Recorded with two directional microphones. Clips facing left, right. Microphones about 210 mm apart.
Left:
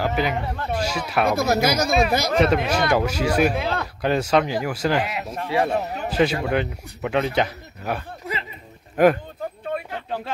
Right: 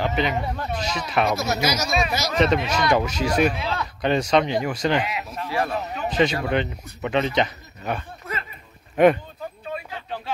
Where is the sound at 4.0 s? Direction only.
5° left (ahead or behind).